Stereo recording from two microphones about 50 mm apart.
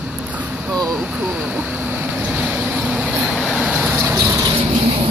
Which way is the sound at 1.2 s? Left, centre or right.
Right.